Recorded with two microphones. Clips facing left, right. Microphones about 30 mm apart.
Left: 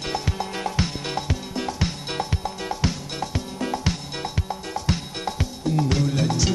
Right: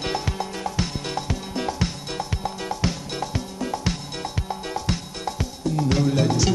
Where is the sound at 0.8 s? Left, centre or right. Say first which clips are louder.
Left 1 dB; centre.